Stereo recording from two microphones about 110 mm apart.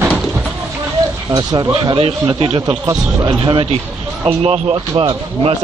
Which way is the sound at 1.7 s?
60° right (ahead or behind).